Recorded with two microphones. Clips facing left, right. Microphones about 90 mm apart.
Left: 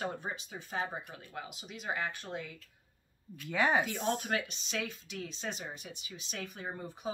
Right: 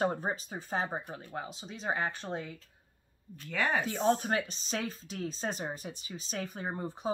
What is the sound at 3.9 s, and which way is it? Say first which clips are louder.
Speech: right 5 dB; 20° right (ahead or behind).